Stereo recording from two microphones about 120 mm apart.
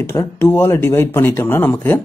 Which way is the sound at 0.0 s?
20° left (ahead or behind).